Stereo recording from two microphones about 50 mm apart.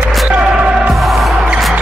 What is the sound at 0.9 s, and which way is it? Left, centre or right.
Music, centre.